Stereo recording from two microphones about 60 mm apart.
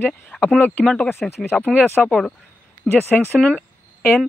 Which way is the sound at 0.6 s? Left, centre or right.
Left.